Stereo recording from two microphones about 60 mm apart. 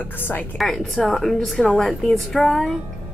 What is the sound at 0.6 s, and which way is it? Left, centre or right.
Speech, centre.